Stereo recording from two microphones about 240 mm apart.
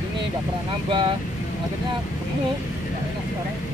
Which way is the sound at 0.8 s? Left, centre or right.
Centre.